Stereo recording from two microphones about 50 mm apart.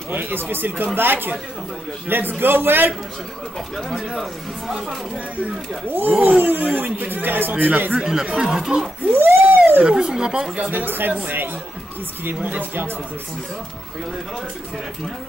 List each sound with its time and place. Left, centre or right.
0.1 s a man's voice: right
4.1 s speech: centre
5.9 s speech: right
8.0 s speech: centre
9.1 s a sound: right
9.8 s speech: centre
10.7 s a man's voice: right